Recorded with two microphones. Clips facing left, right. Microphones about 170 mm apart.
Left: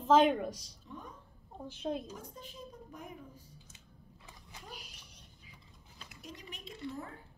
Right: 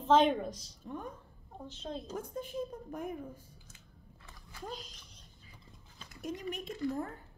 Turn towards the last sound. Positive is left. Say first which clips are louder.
# right 7 dB
turn(degrees=-50)  # may be behind; listen again after turning